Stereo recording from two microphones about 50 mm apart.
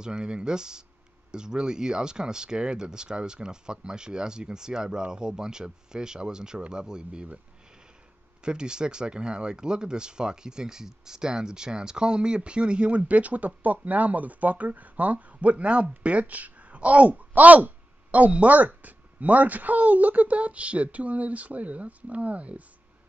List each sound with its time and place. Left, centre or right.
0.0 s speech: centre
8.5 s speech: centre